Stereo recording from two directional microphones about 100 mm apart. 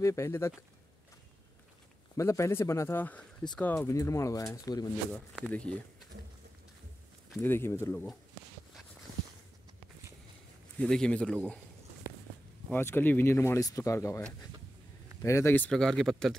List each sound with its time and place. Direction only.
0.0 s speech: 30° left (ahead or behind)
2.1 s speech: 30° left (ahead or behind); by 3.8 s 10° left (ahead or behind)
3.8 s speech: 30° left (ahead or behind)
7.4 s speech: 25° left (ahead or behind)
10.8 s a man's voice: 10° left (ahead or behind)
12.1 s a sound: 30° right (ahead or behind)
12.7 s speech: 20° left (ahead or behind)
15.2 s speech: 30° left (ahead or behind)
15.7 s speech: 5° left (ahead or behind)